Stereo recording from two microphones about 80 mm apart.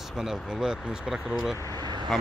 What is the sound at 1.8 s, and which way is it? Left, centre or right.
Vehicle, right.